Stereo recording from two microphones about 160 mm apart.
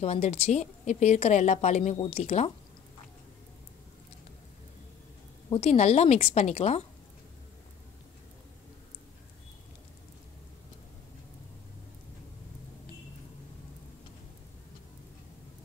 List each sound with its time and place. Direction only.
0.0 s a woman's voice: 45° left (ahead or behind)
5.5 s a woman's voice: 40° left (ahead or behind)